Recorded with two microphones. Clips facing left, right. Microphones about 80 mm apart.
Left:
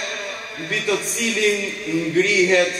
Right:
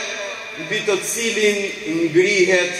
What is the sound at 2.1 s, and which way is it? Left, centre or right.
Speech, centre.